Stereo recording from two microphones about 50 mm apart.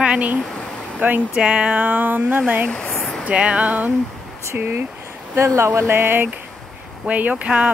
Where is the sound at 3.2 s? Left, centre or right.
Right.